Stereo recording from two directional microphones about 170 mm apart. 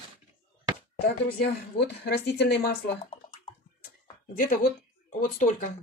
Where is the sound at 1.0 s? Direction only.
75° left (ahead or behind).